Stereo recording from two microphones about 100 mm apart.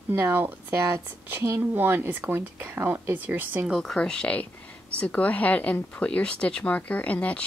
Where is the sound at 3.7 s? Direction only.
5° left (ahead or behind).